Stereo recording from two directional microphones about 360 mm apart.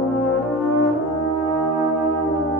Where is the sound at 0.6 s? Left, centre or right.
Left.